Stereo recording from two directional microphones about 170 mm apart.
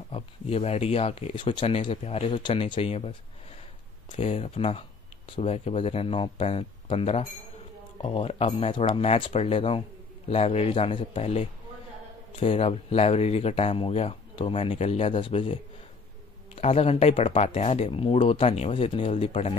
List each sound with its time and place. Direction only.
0.1 s speech: 35° left (ahead or behind)